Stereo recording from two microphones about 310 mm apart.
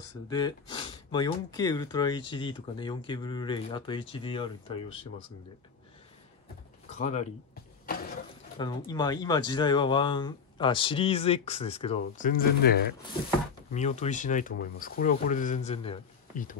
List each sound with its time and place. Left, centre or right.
0.3 s speech: centre
6.9 s speech: left
7.8 s a sound: left
8.5 s a man's voice: centre